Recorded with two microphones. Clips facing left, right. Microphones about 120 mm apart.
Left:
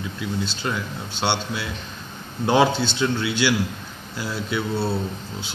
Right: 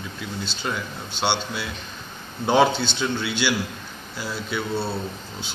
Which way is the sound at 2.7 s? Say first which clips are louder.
Left 2 dB; 40° left (ahead or behind).